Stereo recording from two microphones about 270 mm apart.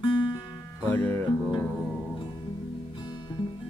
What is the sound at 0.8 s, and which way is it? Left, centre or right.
Music, centre.